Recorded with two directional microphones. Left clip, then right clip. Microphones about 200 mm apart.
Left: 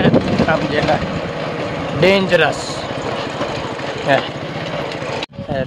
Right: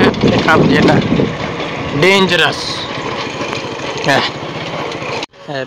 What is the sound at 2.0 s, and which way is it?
Speech, 15° right (ahead or behind).